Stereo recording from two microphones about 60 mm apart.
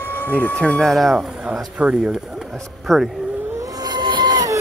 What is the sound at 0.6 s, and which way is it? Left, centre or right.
Speech, centre.